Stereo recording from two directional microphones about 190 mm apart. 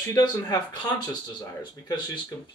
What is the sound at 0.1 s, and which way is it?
Speech, 20° left (ahead or behind).